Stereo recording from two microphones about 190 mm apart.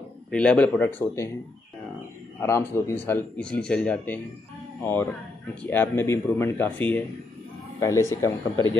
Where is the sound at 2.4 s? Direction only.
15° left (ahead or behind).